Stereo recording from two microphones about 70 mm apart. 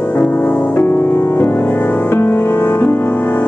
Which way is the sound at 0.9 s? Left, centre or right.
Left.